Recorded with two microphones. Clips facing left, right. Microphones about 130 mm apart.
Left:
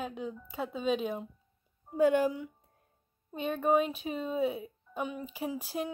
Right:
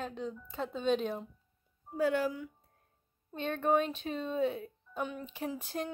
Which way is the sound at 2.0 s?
20° left (ahead or behind).